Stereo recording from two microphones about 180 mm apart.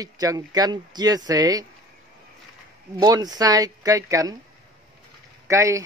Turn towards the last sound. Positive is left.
turn(degrees=-15)  # may be behind; listen again after turning